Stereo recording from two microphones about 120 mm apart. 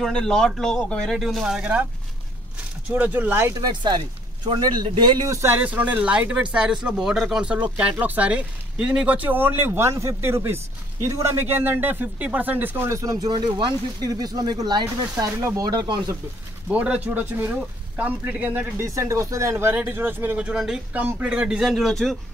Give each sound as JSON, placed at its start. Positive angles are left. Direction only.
{"t": 0.0, "sound": "speech", "side_deg": 5}
{"t": 2.9, "sound": "speech", "side_deg": -15}
{"t": 3.5, "sound": "speech", "side_deg": -40}
{"t": 5.3, "sound": "speech", "side_deg": -20}
{"t": 16.7, "sound": "speech", "side_deg": -10}